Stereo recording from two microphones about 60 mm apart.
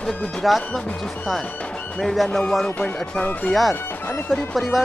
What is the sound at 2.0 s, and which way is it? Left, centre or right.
Speech, centre.